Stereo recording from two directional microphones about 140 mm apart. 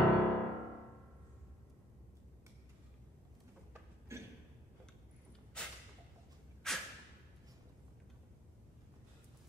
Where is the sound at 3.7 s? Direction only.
20° right (ahead or behind).